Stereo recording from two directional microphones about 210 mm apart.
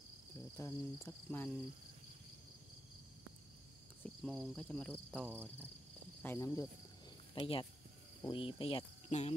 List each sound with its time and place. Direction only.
0.6 s cricket: 15° left (ahead or behind)
4.0 s cricket: 5° left (ahead or behind)
5.1 s cricket: 10° right (ahead or behind)
6.2 s cricket: 10° left (ahead or behind)
7.3 s speech: 25° left (ahead or behind)